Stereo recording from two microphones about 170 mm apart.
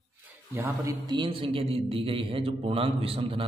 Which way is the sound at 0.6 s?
20° right (ahead or behind).